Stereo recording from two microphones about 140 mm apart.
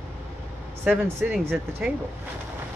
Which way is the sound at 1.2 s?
10° right (ahead or behind).